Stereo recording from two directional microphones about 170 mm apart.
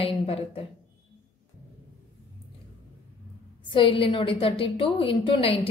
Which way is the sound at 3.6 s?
30° left (ahead or behind).